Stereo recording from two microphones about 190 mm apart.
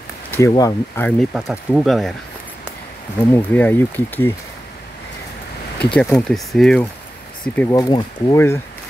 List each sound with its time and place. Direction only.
0.3 s speech: 15° left (ahead or behind)
1.3 s speech: 5° right (ahead or behind)
3.3 s speech: 10° left (ahead or behind)
5.8 s speech: 5° left (ahead or behind)